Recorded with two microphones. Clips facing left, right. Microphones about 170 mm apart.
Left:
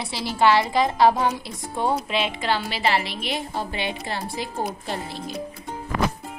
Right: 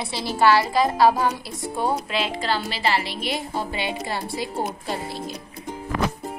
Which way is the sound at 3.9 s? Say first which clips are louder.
Right 2 dB; centre (ahead or behind).